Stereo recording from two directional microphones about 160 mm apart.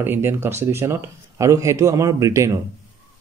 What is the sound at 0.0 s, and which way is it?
Speech, 15° right (ahead or behind).